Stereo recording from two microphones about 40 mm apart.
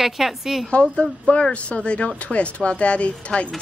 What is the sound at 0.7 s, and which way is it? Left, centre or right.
A woman's voice, left.